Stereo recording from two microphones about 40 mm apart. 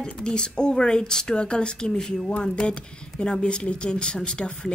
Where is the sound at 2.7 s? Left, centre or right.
Left.